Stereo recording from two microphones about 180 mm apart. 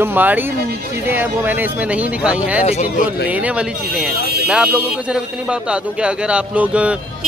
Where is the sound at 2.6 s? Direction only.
40° left (ahead or behind).